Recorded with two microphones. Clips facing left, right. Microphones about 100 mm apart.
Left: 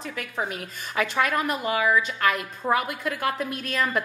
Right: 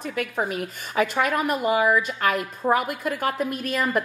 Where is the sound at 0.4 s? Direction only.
5° right (ahead or behind).